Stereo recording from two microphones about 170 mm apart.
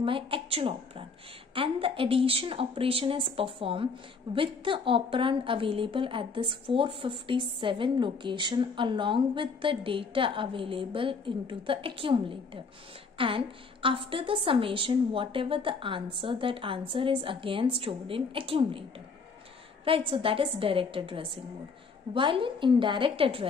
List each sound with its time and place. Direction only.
0.0 s a woman's voice: 30° right (ahead or behind)